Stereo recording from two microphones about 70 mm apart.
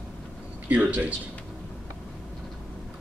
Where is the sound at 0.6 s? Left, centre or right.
Right.